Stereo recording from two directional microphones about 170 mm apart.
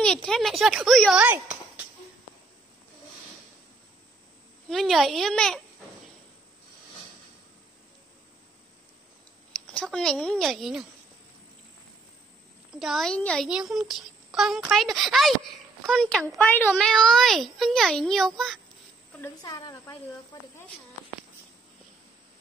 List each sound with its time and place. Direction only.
0.0 s a child's voice: 5° left (ahead or behind)
4.6 s a child's voice: centre (ahead or behind)
9.7 s a child's voice: 5° left (ahead or behind)
12.7 s a child's voice: centre (ahead or behind)
19.4 s speech: 25° left (ahead or behind)